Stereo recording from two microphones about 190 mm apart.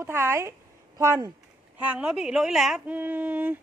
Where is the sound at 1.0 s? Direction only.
15° right (ahead or behind).